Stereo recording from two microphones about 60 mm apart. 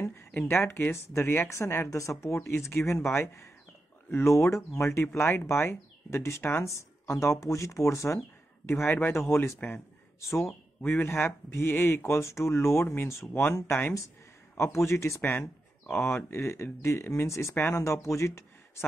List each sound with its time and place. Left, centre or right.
0.0 s a sound: left
0.5 s speech: left
1.9 s speech: left
8.6 s speech: left
10.8 s speech: left
12.8 s speech: left
14.6 s speech: left
15.9 s speech: left